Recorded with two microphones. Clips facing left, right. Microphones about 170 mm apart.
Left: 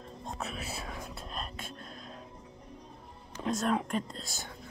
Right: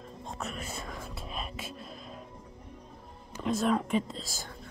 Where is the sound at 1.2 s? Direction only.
5° right (ahead or behind).